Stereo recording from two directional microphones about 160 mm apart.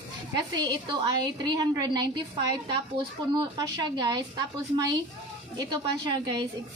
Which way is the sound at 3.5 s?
25° right (ahead or behind).